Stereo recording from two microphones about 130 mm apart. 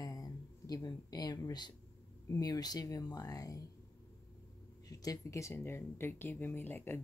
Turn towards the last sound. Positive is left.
turn(degrees=15)  # may be behind; listen again after turning